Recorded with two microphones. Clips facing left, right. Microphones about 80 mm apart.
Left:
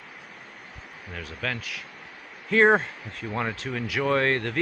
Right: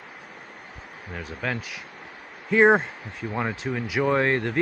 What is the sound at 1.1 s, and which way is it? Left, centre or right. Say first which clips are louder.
Speech: right 2 dB; centre.